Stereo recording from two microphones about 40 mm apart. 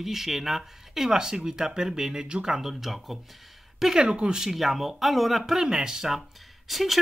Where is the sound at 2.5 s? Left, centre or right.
Centre.